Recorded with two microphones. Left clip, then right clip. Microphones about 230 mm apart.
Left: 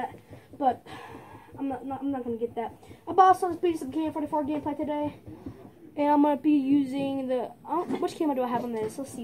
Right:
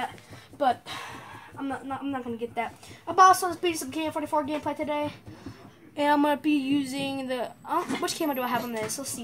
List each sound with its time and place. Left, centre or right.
0.6 s a woman's voice: centre